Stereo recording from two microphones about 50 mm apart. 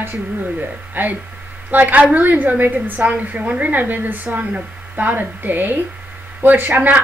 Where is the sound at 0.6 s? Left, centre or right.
Right.